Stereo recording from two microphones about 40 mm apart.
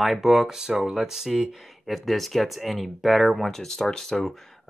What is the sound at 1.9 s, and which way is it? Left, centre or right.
Speech, centre.